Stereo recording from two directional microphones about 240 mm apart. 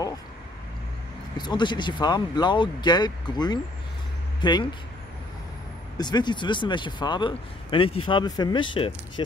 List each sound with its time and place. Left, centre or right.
1.4 s speech: centre
5.9 s speech: centre